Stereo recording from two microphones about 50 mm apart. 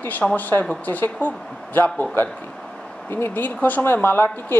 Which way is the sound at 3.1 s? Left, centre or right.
Left.